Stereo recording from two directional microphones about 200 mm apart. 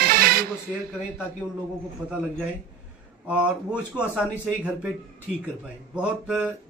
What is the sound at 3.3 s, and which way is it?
A man's voice, 5° right (ahead or behind).